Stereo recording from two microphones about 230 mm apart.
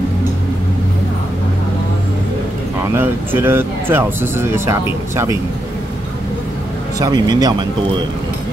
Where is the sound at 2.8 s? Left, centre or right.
Centre.